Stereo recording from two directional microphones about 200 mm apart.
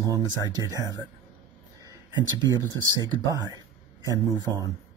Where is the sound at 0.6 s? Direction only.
15° right (ahead or behind).